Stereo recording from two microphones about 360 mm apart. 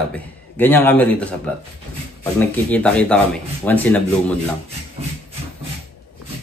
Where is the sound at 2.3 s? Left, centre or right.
Centre.